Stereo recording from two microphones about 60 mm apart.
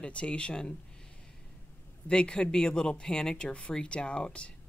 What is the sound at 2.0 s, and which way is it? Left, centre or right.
Speech, centre.